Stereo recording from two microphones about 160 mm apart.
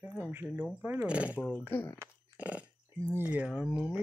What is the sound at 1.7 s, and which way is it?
Speech, 15° left (ahead or behind).